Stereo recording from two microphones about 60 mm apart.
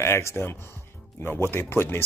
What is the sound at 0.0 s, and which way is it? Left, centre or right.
Speech, left.